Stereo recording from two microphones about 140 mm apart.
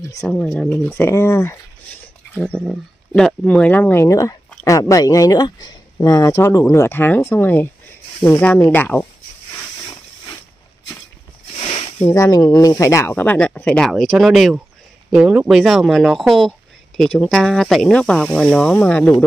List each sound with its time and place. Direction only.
0.3 s speech: 5° left (ahead or behind)
0.8 s speech: 15° left (ahead or behind)
3.2 s speech: 5° left (ahead or behind)
11.5 s a sound: 45° left (ahead or behind)
12.0 s speech: 20° left (ahead or behind)